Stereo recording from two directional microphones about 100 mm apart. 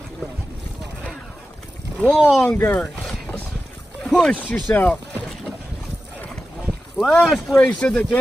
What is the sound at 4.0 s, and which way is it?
Speech, 5° left (ahead or behind).